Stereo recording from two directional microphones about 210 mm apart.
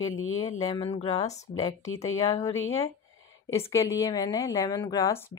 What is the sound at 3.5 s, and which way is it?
Speech, 15° left (ahead or behind).